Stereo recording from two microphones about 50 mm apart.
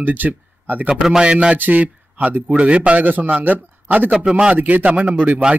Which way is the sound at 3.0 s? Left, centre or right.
Right.